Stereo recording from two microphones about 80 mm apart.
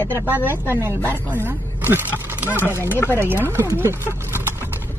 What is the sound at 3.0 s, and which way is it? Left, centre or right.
Speech, left.